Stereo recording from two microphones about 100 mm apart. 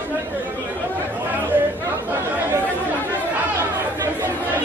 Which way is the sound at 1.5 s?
20° right (ahead or behind).